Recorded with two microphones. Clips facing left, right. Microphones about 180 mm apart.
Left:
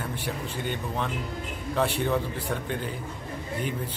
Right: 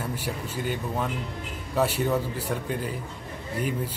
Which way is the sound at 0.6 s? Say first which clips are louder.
Right 2 dB; 5° right (ahead or behind).